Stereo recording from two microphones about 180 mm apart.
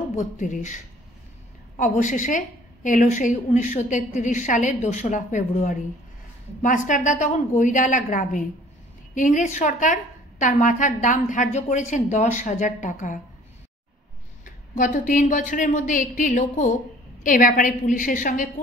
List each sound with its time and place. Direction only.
0.1 s a woman's voice: 45° left (ahead or behind)
14.4 s a woman's voice: 45° left (ahead or behind)